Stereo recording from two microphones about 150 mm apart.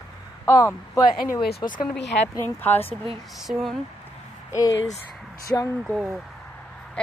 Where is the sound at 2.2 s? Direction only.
15° left (ahead or behind).